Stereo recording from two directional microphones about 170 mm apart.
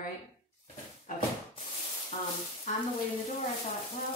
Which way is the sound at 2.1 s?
40° left (ahead or behind).